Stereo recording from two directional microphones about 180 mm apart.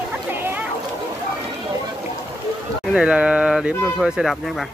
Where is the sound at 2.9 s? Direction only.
5° right (ahead or behind).